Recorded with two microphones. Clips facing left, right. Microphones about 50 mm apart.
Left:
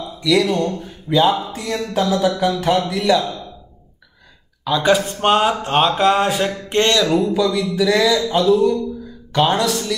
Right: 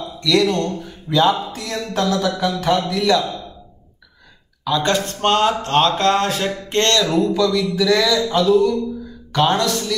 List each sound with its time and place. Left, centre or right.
0.2 s a man's voice: centre
4.6 s speech: centre